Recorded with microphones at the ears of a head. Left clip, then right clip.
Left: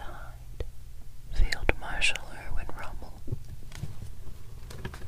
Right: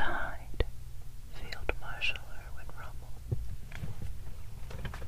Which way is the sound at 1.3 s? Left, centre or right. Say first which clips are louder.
Left 8 dB; left.